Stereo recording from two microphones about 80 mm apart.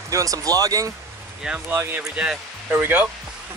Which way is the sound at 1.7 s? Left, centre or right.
Right.